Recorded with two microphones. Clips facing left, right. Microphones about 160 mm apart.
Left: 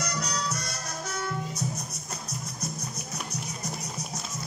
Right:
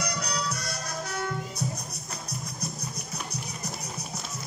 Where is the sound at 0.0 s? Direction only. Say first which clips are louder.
Even; 60° right (ahead or behind).